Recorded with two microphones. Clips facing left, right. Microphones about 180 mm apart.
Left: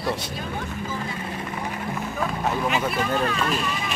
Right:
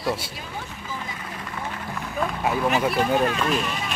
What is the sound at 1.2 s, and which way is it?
Vehicle, 25° left (ahead or behind).